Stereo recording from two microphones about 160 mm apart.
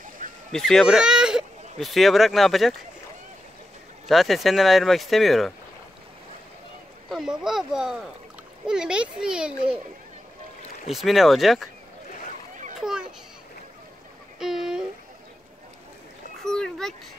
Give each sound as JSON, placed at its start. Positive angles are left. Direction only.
{"t": 0.5, "sound": "speech", "side_deg": 5}
{"t": 4.1, "sound": "speech", "side_deg": 0}
{"t": 7.1, "sound": "speech", "side_deg": -5}
{"t": 10.9, "sound": "speech", "side_deg": 0}
{"t": 14.4, "sound": "a sound", "side_deg": -5}
{"t": 16.4, "sound": "a sound", "side_deg": 5}